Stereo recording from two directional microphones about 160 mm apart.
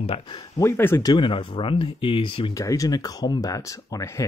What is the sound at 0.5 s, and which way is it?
Speech, 15° left (ahead or behind).